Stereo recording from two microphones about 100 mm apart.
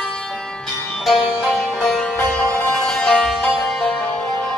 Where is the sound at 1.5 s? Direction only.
5° left (ahead or behind).